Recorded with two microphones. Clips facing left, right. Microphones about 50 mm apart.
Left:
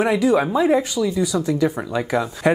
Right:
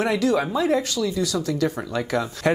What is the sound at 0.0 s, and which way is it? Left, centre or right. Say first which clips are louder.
Speech: left 4 dB; centre.